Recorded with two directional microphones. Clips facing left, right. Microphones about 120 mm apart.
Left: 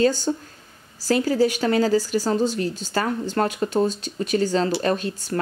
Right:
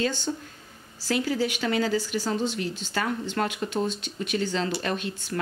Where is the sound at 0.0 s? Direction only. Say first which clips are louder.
Left 8 dB; 40° left (ahead or behind).